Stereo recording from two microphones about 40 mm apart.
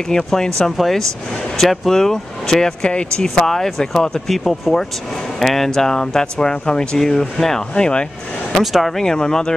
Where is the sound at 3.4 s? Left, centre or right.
Centre.